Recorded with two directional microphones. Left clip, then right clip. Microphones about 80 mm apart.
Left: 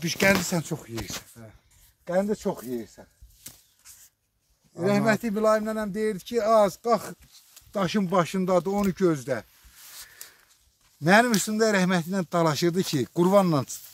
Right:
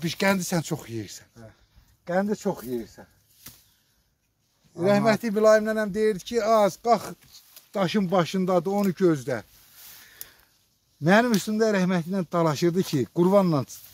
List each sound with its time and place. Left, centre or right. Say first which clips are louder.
0.0 s speech: left 2 dB; right
0.5 s speech: right 2 dB; right
2.2 s speech: even; centre
4.8 s speech: right 2 dB; right
5.2 s speech: right 4 dB; right
5.9 s speech: right 1 dB; right
7.7 s speech: right 1 dB; right
8.9 s speech: right 2 dB; right
11.0 s speech: left 1 dB; right
11.5 s speech: left 1 dB; centre
12.2 s speech: right 1 dB; right